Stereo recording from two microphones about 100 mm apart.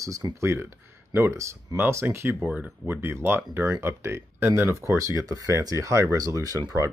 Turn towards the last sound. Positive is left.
turn(degrees=-35)  # may be behind; listen again after turning